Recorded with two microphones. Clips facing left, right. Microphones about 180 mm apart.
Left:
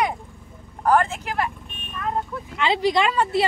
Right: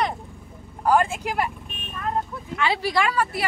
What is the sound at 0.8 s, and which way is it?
Speech, 10° right (ahead or behind).